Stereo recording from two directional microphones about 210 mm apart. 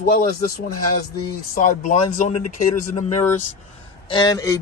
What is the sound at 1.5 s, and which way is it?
Speech, 40° left (ahead or behind).